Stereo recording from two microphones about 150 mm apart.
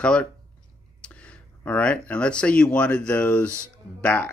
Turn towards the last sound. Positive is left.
turn(degrees=10)  # may be behind; listen again after turning